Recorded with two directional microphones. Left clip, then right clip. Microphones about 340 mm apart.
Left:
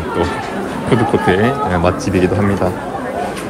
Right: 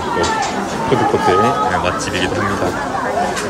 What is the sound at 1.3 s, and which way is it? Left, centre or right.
Speech, centre.